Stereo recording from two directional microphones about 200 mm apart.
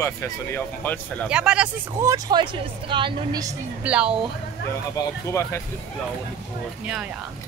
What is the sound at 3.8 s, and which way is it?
Speech, 5° right (ahead or behind).